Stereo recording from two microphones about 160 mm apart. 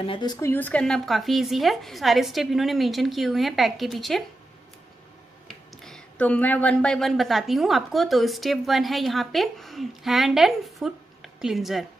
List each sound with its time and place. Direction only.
0.0 s a woman's voice: 30° left (ahead or behind)
0.5 s speech: 10° left (ahead or behind)
5.5 s speech: 5° left (ahead or behind)